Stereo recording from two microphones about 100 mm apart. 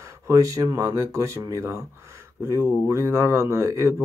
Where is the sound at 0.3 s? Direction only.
35° right (ahead or behind).